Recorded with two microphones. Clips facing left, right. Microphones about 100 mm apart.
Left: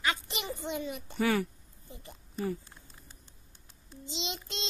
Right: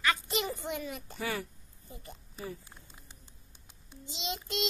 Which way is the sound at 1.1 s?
65° left (ahead or behind).